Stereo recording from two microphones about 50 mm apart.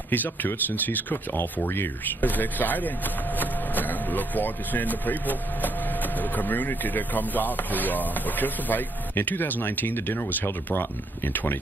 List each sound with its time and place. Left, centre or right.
0.1 s speech: left